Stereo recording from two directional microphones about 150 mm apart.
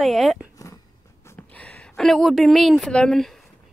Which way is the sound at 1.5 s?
10° left (ahead or behind).